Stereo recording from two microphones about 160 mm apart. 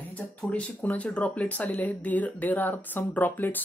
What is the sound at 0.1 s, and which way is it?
Speech, 10° left (ahead or behind).